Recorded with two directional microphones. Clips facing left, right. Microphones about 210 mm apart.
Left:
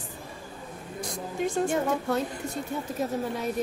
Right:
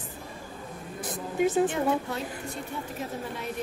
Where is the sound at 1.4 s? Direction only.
5° right (ahead or behind).